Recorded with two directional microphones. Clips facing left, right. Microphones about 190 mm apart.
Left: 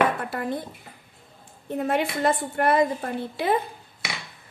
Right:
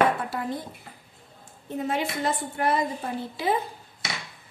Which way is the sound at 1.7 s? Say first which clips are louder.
Left 3 dB; 60° left (ahead or behind).